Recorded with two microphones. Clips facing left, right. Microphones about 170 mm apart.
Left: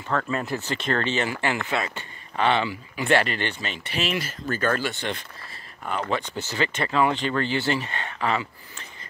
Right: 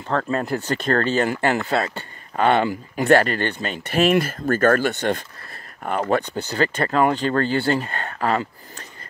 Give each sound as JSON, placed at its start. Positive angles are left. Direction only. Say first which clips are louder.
{"t": 0.1, "sound": "speech", "louder": "right 4 dB", "side_deg": -35}
{"t": 2.4, "sound": "speech", "louder": "right 5 dB", "side_deg": -50}